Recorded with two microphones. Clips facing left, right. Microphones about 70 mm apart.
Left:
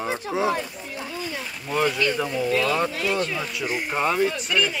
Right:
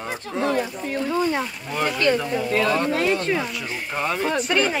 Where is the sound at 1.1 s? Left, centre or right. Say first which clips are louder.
Right 11 dB; right.